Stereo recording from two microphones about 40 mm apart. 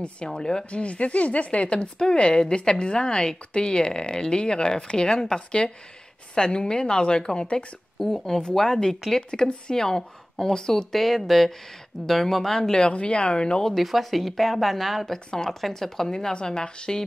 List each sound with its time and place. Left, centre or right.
0.3 s a woman's voice: centre
0.7 s a woman's voice: left
8.0 s a woman's voice: centre
12.4 s a woman's voice: centre
12.9 s a woman's voice: left
13.7 s a woman's voice: centre; by 17.0 s left